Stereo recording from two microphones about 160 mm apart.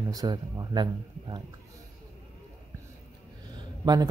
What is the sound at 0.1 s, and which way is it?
Speech, 25° right (ahead or behind).